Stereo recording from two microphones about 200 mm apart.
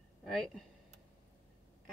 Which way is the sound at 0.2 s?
Centre (ahead or behind).